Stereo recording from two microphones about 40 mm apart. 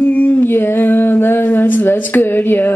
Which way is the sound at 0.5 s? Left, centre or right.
Left.